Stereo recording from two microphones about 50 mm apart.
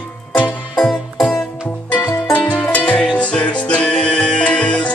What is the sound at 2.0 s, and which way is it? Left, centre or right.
Music, left.